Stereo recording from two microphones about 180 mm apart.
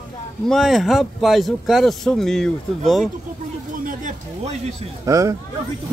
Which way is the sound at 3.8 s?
40° right (ahead or behind).